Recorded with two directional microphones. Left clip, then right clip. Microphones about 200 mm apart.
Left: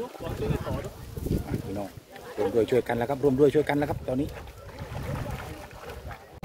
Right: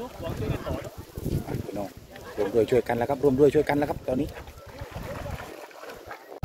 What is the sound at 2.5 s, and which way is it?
Speech, 10° right (ahead or behind).